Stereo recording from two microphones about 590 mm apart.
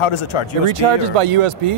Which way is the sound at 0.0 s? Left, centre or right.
Left.